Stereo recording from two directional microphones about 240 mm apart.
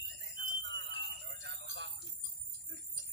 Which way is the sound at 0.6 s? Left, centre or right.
Right.